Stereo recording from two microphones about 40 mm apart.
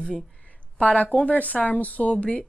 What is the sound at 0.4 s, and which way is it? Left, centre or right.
Speech, left.